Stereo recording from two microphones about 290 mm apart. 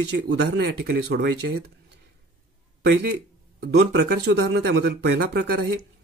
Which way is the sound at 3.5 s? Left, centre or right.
Right.